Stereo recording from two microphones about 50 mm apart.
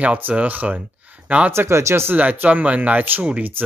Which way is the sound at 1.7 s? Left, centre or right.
Right.